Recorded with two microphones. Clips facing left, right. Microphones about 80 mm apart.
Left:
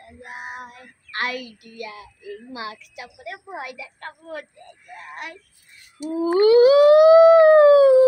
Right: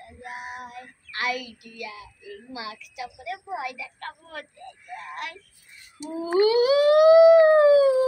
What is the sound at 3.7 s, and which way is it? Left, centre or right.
Speech, left.